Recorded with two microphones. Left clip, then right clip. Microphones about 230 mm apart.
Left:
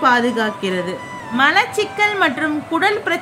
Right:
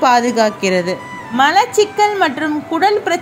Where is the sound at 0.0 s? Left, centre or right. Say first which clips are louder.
Right 3 dB; right.